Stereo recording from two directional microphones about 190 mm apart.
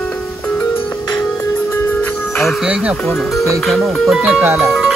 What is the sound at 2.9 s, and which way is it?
Speech, centre (ahead or behind).